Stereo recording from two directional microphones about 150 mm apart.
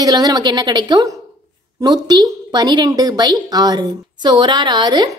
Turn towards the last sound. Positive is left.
turn(degrees=-30)  # may be behind; listen again after turning